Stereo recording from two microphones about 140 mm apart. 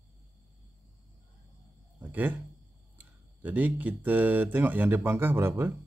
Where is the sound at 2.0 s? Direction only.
15° right (ahead or behind).